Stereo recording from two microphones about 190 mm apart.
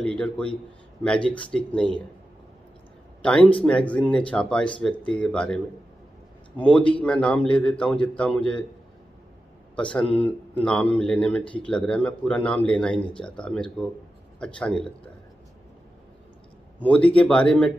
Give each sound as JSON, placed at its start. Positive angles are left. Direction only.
{"t": 0.0, "sound": "speech", "side_deg": 5}
{"t": 1.2, "sound": "speech", "side_deg": 25}
{"t": 1.5, "sound": "speech", "side_deg": 5}
{"t": 3.2, "sound": "a man's voice", "side_deg": 5}
{"t": 10.6, "sound": "a man's voice", "side_deg": 5}
{"t": 16.8, "sound": "a man's voice", "side_deg": 5}